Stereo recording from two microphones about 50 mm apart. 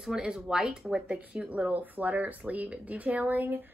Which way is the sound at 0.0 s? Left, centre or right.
Centre.